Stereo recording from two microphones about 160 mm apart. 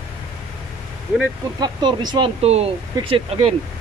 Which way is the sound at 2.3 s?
40° right (ahead or behind).